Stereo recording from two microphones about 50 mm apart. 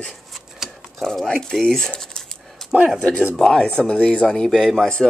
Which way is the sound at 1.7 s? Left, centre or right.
Centre.